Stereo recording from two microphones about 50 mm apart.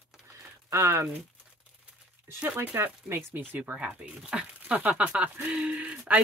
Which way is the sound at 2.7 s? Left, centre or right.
Right.